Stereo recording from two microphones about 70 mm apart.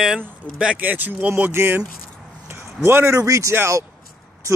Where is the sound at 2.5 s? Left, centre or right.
Right.